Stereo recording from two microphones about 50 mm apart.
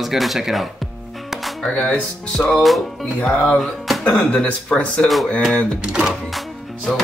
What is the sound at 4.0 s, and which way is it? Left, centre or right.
Speech, left.